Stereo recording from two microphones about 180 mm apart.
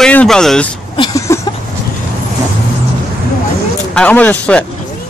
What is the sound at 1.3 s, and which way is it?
Speech, 15° left (ahead or behind).